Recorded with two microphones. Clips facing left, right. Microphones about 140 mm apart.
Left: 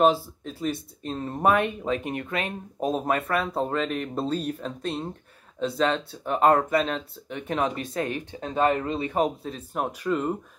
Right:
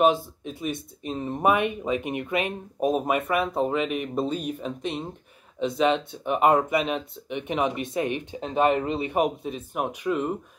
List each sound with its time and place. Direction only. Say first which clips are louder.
0.0 s speech: even; 10° right (ahead or behind)